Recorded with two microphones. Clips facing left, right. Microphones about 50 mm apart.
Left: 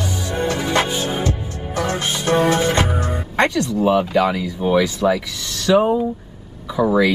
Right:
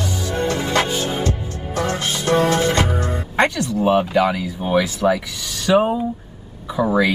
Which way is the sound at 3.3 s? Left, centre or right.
Centre.